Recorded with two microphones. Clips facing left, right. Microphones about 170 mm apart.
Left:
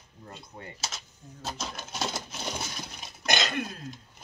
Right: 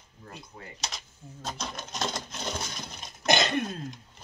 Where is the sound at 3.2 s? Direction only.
25° right (ahead or behind).